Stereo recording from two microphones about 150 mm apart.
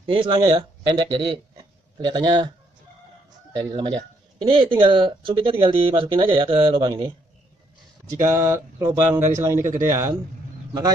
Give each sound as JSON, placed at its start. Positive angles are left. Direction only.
{"t": 0.0, "sound": "a man's voice", "side_deg": -35}
{"t": 3.7, "sound": "speech", "side_deg": -30}
{"t": 8.2, "sound": "speech", "side_deg": -20}